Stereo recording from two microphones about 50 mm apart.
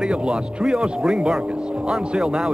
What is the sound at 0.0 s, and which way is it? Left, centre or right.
Speech, centre.